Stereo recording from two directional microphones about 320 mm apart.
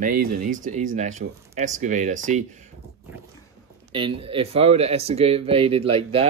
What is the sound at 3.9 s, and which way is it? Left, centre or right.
Speech, centre.